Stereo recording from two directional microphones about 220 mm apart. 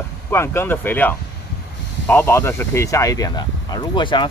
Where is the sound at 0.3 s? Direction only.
10° left (ahead or behind).